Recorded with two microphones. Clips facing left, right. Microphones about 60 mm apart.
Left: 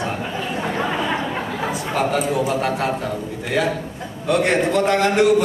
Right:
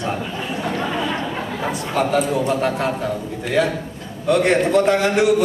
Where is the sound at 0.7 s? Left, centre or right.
Centre.